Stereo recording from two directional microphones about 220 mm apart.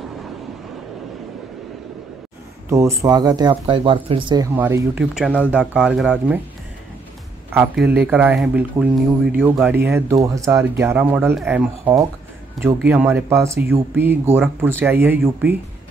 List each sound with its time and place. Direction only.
2.7 s speech: 15° right (ahead or behind)
4.6 s speech: 10° right (ahead or behind)
7.9 s speech: 5° right (ahead or behind)